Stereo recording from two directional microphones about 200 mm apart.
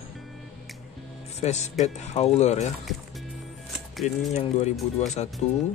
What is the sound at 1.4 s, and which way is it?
Speech, 35° left (ahead or behind).